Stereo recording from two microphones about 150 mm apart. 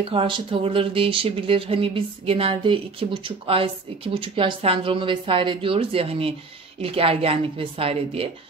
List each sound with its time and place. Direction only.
0.1 s speech: 35° right (ahead or behind)